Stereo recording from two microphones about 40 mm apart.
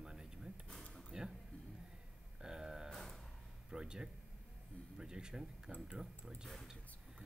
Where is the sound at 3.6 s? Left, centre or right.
Centre.